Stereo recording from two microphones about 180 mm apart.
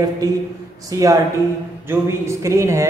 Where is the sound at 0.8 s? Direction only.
20° right (ahead or behind).